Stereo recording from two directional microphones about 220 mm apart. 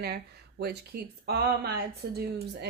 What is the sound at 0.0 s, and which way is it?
A woman's voice, 45° right (ahead or behind).